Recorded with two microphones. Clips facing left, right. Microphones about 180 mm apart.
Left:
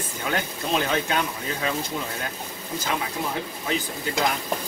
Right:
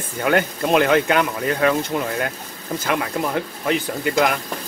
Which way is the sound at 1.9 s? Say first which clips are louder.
Right 7 dB; 80° right.